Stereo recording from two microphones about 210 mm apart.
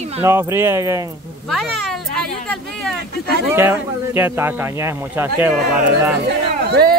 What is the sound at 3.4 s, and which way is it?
Speech, 10° right (ahead or behind).